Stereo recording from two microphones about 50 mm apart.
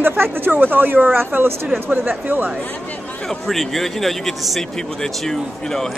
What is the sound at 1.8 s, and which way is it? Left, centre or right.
Speech, right.